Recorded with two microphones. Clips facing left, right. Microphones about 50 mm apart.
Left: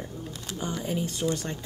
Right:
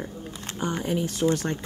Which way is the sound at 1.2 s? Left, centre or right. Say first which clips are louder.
Right 6 dB; centre.